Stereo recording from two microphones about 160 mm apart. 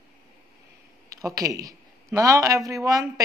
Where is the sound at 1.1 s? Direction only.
20° right (ahead or behind).